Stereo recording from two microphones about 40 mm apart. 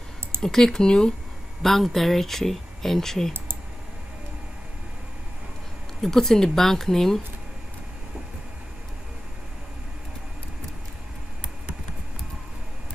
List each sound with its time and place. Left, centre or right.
0.4 s speech: centre
1.6 s speech: centre
5.9 s speech: centre